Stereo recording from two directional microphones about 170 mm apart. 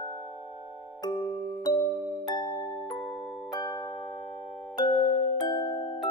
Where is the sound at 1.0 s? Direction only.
25° left (ahead or behind).